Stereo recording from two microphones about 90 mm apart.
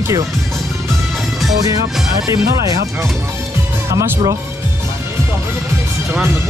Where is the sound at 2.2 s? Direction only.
40° right (ahead or behind).